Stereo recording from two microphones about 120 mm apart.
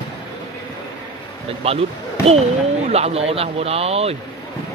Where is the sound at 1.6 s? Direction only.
55° right (ahead or behind).